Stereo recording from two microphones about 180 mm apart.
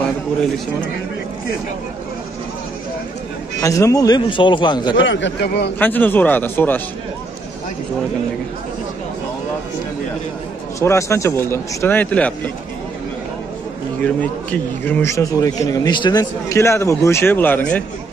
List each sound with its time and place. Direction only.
3.6 s speech: 20° left (ahead or behind)
4.9 s speech: 90° left; by 5.7 s 70° left (ahead or behind)
5.8 s a man's voice: 10° left (ahead or behind)
10.8 s a man's voice: 15° left (ahead or behind)
14.0 s a man's voice: 10° left (ahead or behind)